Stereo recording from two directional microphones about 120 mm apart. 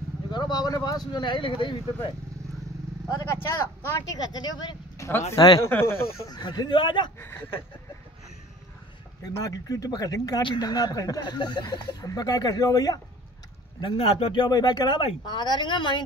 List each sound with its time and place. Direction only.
0.3 s speech: 35° left (ahead or behind)
3.8 s speech: 30° left (ahead or behind)
5.7 s speech: 20° left (ahead or behind)
6.2 s speech: 35° left (ahead or behind)
7.2 s speech: 20° left (ahead or behind)
9.2 s speech: 30° left (ahead or behind)
13.7 s speech: 50° left (ahead or behind)